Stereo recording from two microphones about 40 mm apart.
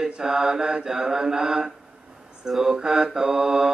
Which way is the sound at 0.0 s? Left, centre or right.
Centre.